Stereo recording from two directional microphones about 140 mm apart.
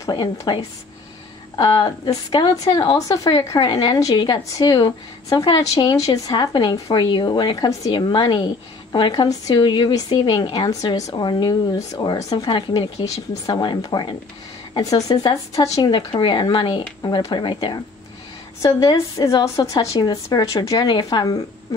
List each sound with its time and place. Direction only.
0.0 s a woman's voice: 30° left (ahead or behind)